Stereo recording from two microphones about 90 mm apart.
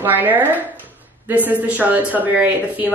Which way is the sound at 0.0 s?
20° right (ahead or behind).